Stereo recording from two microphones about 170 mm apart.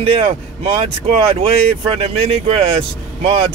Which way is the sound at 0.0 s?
30° right (ahead or behind).